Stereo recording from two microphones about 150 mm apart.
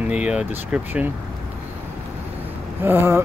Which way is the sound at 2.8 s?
15° right (ahead or behind).